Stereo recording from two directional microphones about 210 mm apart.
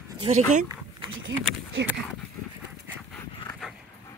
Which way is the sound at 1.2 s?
60° right (ahead or behind).